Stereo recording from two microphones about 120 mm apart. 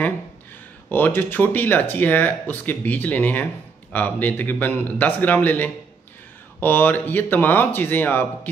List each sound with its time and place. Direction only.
0.8 s speech: 15° left (ahead or behind)